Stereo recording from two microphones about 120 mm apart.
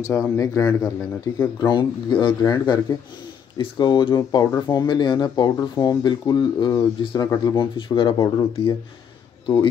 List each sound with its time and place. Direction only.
0.0 s a man's voice: 25° left (ahead or behind); by 8.7 s 45° left (ahead or behind)